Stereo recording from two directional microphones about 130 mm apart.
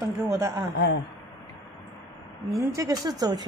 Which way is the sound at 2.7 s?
25° right (ahead or behind).